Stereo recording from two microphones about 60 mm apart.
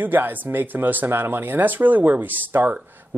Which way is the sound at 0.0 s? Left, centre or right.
Right.